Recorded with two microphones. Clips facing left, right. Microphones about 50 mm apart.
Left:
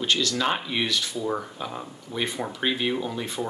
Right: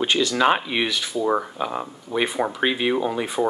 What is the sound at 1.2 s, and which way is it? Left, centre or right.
Speech, right.